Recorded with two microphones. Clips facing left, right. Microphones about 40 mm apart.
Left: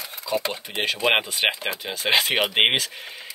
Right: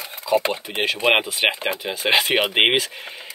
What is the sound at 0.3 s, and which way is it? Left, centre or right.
Speech, centre.